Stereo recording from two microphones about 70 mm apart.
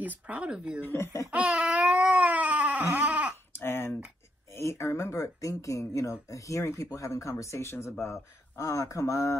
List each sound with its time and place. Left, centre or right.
0.0 s speech: right
0.8 s speech: left
1.3 s baby cry: centre
3.0 s a sound: centre
3.5 s a sound: left
4.5 s speech: left
6.6 s speech: left